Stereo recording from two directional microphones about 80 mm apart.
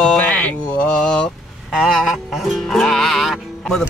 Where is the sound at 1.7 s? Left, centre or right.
Centre.